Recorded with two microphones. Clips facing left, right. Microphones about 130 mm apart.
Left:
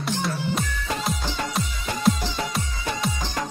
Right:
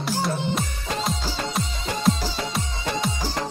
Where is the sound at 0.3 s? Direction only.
20° right (ahead or behind).